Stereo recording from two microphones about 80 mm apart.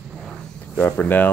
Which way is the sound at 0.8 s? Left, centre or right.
Left.